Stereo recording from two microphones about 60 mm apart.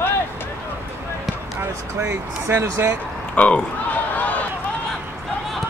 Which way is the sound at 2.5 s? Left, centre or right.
Right.